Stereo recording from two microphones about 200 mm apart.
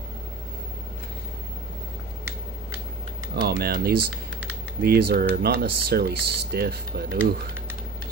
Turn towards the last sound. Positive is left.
turn(degrees=-50)  # may be behind; listen again after turning